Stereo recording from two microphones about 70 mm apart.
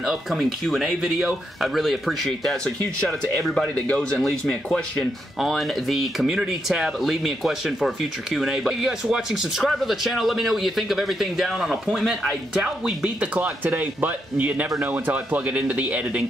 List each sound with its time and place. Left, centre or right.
0.0 s speech: centre
5.4 s speech: centre